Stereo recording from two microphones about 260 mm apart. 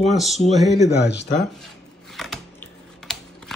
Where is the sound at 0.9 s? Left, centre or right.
Left.